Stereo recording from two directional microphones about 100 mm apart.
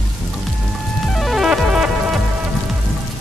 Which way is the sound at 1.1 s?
Centre (ahead or behind).